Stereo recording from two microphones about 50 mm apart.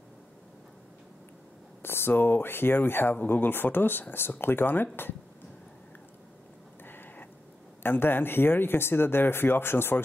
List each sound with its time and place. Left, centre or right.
1.8 s speech: left
6.8 s a sound: left
7.8 s speech: left